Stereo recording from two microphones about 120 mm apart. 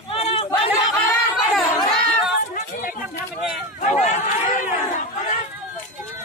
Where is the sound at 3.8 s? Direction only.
80° left.